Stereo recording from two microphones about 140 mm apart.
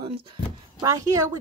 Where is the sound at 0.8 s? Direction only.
25° right (ahead or behind).